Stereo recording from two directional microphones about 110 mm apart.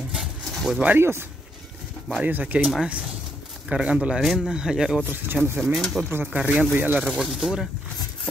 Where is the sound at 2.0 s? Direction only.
5° right (ahead or behind).